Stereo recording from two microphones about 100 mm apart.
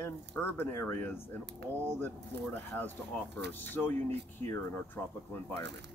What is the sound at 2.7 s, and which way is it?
Speech, 15° left (ahead or behind).